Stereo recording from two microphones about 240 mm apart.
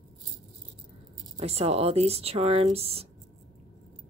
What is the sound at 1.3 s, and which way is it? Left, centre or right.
Speech, right.